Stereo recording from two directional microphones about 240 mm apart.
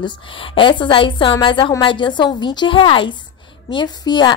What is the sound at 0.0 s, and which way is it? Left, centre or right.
A woman's voice, left.